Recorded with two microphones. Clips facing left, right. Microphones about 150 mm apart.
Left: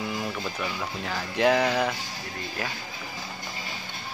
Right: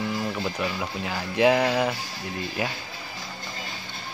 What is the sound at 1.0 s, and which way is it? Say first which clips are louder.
Speech: right 2 dB; 5° right (ahead or behind).